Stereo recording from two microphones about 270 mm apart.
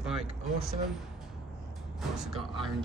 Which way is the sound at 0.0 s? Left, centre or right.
Centre.